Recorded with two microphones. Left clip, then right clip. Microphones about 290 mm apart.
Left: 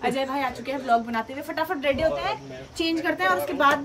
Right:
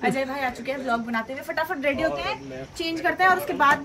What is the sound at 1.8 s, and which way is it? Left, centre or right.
Speech, left.